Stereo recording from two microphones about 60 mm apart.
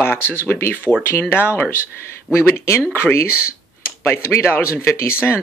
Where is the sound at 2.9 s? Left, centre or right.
Left.